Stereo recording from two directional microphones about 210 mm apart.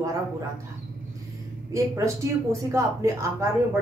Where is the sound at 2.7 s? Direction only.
15° right (ahead or behind).